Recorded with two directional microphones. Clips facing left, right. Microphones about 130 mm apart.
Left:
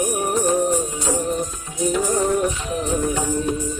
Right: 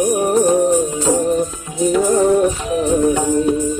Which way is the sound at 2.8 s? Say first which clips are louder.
Right 8 dB; 15° right (ahead or behind).